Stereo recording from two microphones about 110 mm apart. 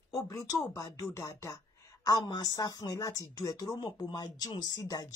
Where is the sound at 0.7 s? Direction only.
30° left (ahead or behind).